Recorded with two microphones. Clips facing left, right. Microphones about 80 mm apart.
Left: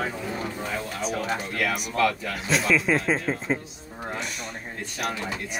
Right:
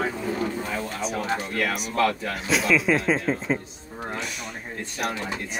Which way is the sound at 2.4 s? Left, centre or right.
Centre.